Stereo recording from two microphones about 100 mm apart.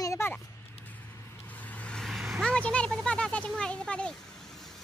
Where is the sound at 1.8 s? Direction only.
10° left (ahead or behind).